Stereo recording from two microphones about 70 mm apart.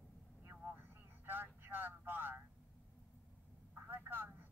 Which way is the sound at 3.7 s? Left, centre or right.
Right.